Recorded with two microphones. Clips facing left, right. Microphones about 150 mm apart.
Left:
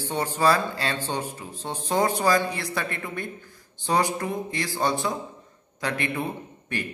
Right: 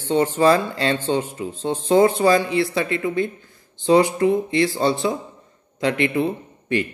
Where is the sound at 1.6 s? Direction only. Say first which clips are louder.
Right 9 dB; 90° right.